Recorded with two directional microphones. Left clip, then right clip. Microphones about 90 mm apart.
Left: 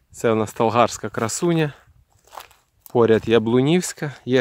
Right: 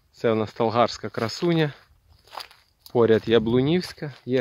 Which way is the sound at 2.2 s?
10° left (ahead or behind).